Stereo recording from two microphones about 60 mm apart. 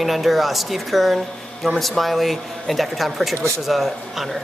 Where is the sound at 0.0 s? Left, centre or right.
Centre.